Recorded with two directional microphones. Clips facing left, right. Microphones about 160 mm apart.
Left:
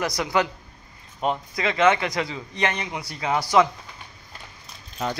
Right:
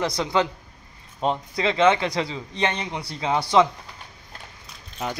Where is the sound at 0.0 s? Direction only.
25° right (ahead or behind).